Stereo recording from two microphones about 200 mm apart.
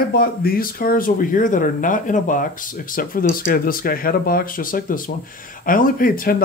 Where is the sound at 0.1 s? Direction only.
50° left (ahead or behind).